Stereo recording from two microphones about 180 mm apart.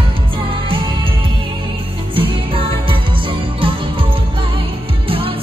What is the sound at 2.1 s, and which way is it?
Music, 30° right (ahead or behind).